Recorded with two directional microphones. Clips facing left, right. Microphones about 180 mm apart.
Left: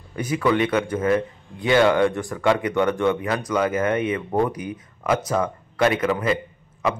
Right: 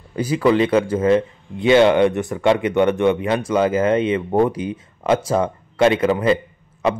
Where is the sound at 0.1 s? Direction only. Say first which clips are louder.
Right 4 dB; 30° right (ahead or behind).